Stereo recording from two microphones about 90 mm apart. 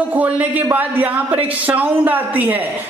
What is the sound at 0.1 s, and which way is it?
A man's voice, 20° right (ahead or behind).